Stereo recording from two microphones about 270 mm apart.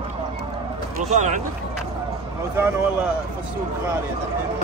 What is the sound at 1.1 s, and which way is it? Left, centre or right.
Speech, right.